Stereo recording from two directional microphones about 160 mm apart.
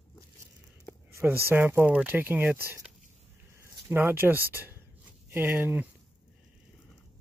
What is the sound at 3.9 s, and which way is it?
Speech, 10° right (ahead or behind).